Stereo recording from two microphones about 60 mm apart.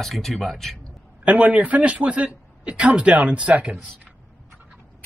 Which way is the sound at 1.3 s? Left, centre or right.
Right.